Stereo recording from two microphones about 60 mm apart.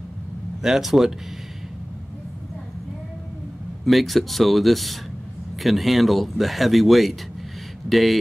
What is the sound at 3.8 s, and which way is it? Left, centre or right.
A man's voice, centre.